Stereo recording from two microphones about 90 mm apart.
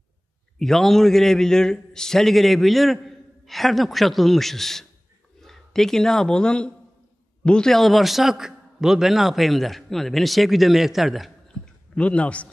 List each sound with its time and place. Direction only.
0.6 s a man's voice: 5° left (ahead or behind)